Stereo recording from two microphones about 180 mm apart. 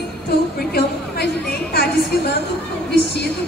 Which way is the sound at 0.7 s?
60° left (ahead or behind).